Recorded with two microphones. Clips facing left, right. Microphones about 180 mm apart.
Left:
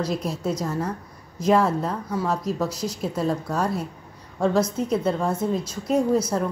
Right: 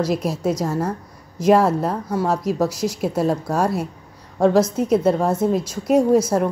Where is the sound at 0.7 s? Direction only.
45° right (ahead or behind).